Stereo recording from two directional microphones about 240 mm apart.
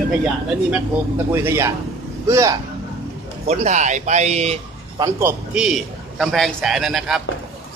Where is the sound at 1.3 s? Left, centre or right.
Centre.